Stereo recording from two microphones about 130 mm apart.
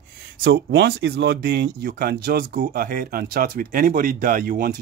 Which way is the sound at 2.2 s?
90° right.